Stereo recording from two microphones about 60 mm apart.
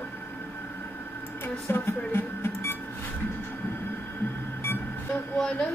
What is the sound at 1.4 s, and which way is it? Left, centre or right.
Speech, left.